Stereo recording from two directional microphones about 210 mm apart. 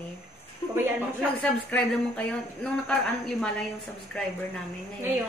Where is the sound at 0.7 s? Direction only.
10° right (ahead or behind).